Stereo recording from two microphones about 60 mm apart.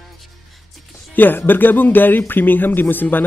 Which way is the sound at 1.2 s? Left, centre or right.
Left.